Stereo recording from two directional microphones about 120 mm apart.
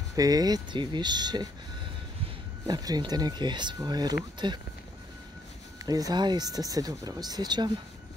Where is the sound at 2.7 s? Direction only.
35° right (ahead or behind).